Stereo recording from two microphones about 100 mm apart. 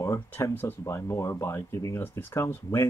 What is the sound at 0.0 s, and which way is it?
Speech, 30° left (ahead or behind).